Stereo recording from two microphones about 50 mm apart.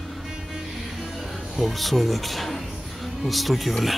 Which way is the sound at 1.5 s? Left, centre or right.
Centre.